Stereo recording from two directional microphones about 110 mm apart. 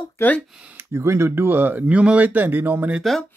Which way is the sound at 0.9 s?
25° right (ahead or behind).